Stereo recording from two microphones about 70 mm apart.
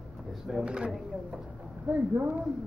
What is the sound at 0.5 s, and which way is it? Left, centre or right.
Speech, centre.